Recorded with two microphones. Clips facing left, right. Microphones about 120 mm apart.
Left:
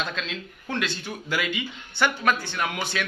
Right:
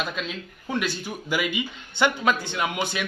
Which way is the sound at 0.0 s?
5° right (ahead or behind).